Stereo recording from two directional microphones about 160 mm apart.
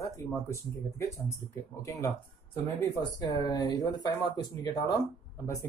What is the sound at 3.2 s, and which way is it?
Speech, 25° left (ahead or behind).